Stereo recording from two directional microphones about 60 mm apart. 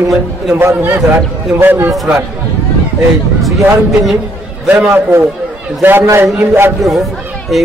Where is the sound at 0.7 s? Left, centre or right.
Right.